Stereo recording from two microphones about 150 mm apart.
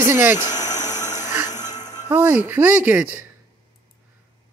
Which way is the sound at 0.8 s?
50° left (ahead or behind).